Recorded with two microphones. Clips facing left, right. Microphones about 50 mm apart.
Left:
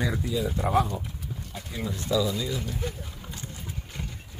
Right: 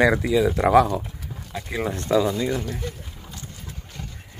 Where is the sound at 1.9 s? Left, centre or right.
Right.